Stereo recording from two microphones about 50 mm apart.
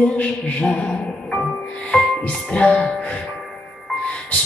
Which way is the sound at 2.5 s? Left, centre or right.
Left.